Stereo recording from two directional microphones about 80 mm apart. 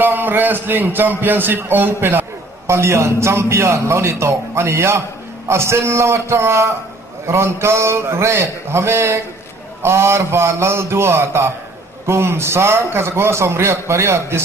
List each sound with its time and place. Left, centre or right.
0.0 s a man's voice: right